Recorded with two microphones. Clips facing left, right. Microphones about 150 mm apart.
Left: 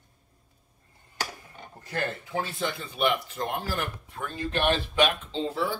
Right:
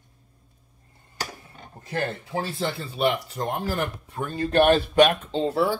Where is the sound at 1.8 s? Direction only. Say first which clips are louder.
Right 3 dB; 30° right (ahead or behind).